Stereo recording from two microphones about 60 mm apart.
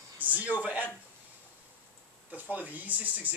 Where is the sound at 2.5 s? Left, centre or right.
Right.